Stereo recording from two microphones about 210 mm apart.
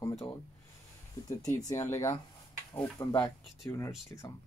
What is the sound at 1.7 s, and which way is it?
Speech, 15° left (ahead or behind).